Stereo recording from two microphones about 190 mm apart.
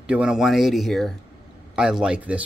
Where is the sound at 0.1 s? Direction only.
5° right (ahead or behind).